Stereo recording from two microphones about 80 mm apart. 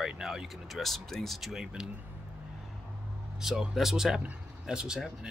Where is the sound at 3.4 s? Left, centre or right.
Centre.